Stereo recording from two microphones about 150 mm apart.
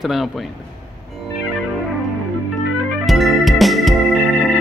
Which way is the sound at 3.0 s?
Centre (ahead or behind).